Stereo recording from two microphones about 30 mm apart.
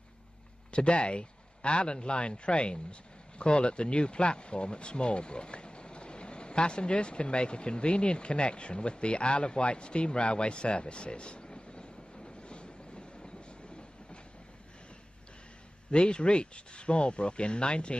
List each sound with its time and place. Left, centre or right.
0.7 s speech: left
15.9 s speech: left